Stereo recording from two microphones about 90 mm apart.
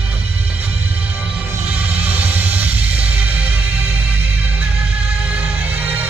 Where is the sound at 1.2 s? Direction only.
15° right (ahead or behind).